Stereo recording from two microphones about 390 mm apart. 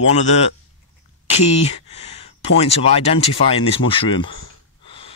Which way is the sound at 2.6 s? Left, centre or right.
Centre.